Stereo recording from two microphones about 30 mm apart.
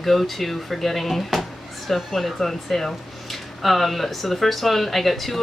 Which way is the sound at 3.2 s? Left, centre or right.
Centre.